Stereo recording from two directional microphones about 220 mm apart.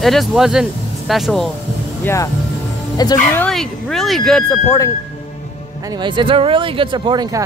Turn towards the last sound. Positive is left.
turn(degrees=-20)  # may be behind; listen again after turning